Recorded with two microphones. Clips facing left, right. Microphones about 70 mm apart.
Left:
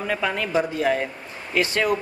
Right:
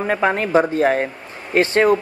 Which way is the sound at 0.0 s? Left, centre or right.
Right.